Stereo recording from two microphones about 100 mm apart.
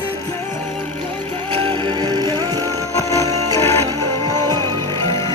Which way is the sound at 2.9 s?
30° left (ahead or behind).